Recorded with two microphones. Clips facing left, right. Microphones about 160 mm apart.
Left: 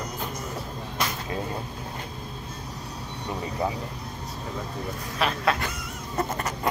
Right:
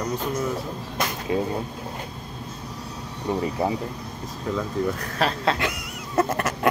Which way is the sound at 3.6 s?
30° right (ahead or behind).